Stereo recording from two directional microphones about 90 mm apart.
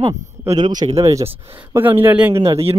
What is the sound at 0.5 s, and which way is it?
Speech, 50° right (ahead or behind).